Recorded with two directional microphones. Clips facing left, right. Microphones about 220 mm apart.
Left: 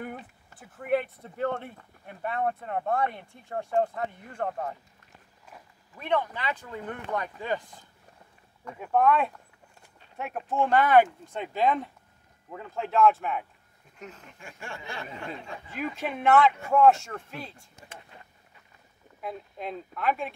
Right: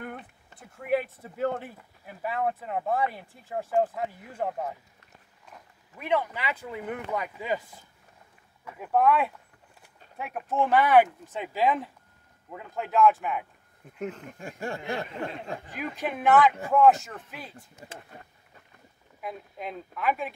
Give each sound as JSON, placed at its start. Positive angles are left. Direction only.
{"t": 0.0, "sound": "speech", "side_deg": 5}
{"t": 5.9, "sound": "speech", "side_deg": -10}
{"t": 13.9, "sound": "speech", "side_deg": -55}
{"t": 14.4, "sound": "a sound", "side_deg": -40}
{"t": 14.8, "sound": "speech", "side_deg": -45}
{"t": 15.8, "sound": "speech", "side_deg": 0}
{"t": 19.2, "sound": "speech", "side_deg": 0}